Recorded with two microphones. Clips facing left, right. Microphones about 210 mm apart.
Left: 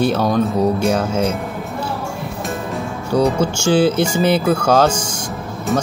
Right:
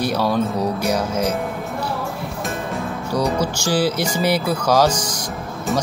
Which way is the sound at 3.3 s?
25° left (ahead or behind).